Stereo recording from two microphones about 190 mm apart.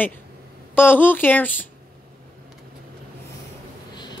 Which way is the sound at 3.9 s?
25° left (ahead or behind).